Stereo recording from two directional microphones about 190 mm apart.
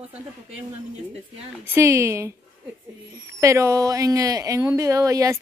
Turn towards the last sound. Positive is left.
turn(degrees=-15)  # may be behind; listen again after turning